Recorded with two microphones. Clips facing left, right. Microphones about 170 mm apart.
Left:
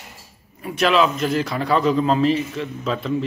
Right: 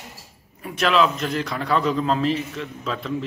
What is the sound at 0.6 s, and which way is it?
A man's voice, centre (ahead or behind).